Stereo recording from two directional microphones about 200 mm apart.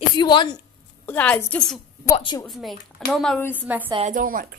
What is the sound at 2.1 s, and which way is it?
Speech, 20° left (ahead or behind).